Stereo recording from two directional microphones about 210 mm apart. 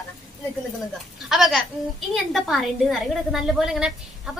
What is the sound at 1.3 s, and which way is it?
A woman's voice, centre (ahead or behind).